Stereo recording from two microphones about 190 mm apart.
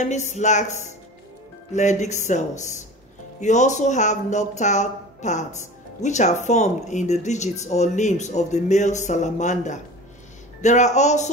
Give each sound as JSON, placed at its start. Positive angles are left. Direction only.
{"t": 0.0, "sound": "speech", "side_deg": 40}